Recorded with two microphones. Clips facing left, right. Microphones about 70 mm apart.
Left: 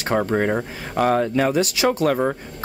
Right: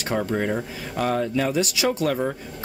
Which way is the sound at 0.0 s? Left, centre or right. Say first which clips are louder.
Left 4 dB; left.